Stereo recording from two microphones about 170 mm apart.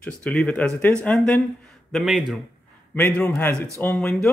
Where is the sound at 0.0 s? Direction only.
5° left (ahead or behind).